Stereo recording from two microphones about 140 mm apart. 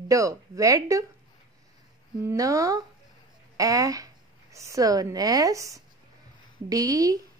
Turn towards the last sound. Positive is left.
turn(degrees=-25)  # may be behind; listen again after turning